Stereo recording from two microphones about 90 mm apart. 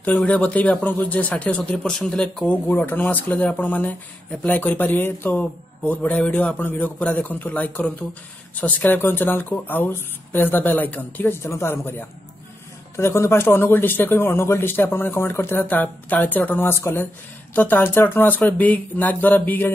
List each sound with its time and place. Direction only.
0.1 s speech: 15° left (ahead or behind)
2.4 s speech: 20° left (ahead or behind)